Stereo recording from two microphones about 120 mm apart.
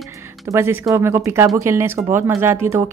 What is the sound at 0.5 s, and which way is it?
Speech, 20° right (ahead or behind).